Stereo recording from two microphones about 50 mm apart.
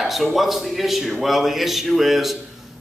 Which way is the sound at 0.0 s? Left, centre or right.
Centre.